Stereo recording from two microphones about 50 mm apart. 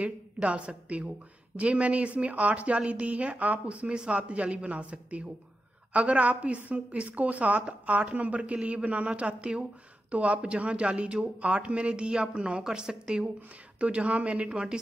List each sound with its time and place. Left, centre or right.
0.0 s a woman's voice: right